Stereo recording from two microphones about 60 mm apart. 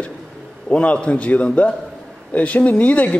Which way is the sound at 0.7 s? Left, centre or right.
Centre.